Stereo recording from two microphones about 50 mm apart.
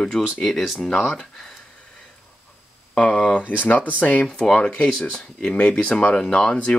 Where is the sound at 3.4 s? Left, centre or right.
Left.